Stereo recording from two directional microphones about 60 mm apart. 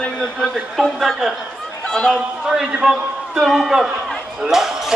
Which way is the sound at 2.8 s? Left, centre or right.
Centre.